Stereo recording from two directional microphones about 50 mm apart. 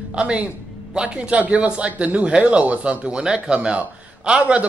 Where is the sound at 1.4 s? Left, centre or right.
Right.